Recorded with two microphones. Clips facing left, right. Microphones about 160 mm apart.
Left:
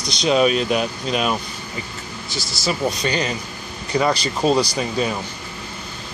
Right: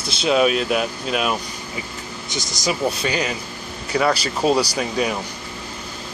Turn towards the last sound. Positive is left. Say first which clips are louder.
# even
turn(degrees=-10)  # may be behind; listen again after turning